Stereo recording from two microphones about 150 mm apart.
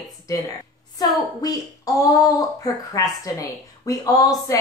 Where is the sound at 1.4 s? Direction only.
25° left (ahead or behind).